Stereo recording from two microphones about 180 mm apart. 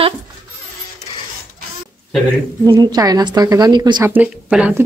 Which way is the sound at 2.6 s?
20° right (ahead or behind).